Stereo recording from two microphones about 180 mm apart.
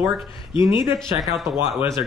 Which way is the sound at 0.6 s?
25° left (ahead or behind).